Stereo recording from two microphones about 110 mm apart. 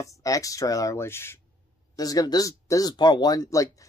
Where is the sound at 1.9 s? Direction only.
35° left (ahead or behind).